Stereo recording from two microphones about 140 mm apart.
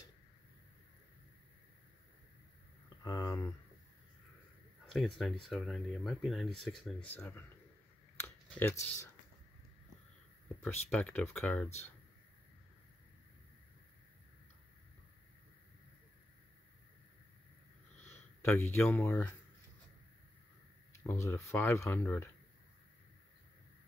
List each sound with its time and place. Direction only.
3.0 s speech: 30° left (ahead or behind)
4.9 s speech: centre (ahead or behind)
8.2 s a sound: 15° left (ahead or behind)
10.9 s speech: 10° left (ahead or behind)
18.0 s speech: 15° left (ahead or behind)
21.0 s speech: 15° left (ahead or behind)